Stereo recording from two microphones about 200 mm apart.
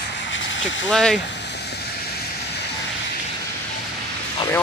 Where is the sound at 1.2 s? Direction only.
60° left (ahead or behind).